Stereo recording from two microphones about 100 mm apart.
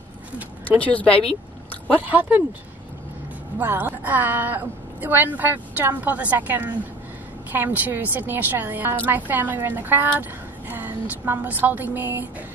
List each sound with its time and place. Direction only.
0.7 s speech: 15° left (ahead or behind)
1.0 s speech: 70° left (ahead or behind)
2.0 s a woman's voice: 15° right (ahead or behind)
3.5 s a woman's voice: 20° right (ahead or behind)